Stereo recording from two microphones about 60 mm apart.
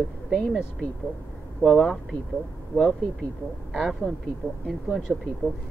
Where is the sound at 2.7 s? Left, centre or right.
Left.